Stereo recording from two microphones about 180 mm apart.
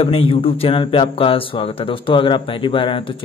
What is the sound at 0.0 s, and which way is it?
Speech, 30° left (ahead or behind).